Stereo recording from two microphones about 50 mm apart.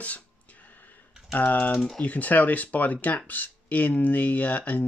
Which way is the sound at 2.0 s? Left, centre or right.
Left.